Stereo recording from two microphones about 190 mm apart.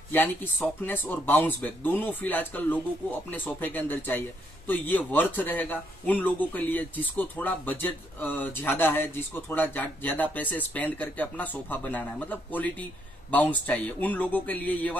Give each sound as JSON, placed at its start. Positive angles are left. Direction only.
{"t": 0.1, "sound": "speech", "side_deg": 10}